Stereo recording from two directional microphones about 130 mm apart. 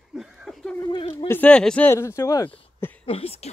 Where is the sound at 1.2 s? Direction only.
10° left (ahead or behind).